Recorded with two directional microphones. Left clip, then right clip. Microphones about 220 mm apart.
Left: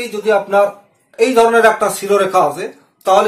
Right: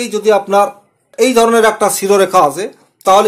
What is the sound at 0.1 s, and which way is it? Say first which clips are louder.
Speech: right 3 dB; 45° right (ahead or behind).